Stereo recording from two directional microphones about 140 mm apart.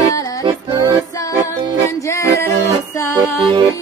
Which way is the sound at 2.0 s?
20° left (ahead or behind).